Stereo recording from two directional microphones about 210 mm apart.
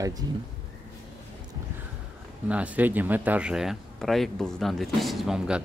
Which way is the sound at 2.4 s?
5° right (ahead or behind).